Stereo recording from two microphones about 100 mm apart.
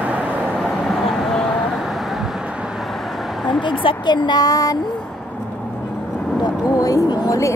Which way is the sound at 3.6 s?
55° left (ahead or behind).